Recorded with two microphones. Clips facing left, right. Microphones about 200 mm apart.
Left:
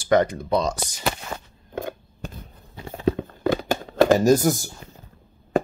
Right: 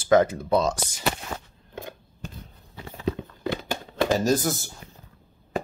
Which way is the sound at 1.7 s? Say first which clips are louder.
Left 8 dB; 55° left (ahead or behind).